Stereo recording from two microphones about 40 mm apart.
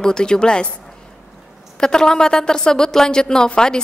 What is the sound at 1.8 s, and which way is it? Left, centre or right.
A woman's voice, centre.